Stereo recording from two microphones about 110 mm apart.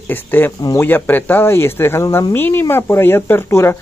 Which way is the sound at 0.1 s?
20° left (ahead or behind).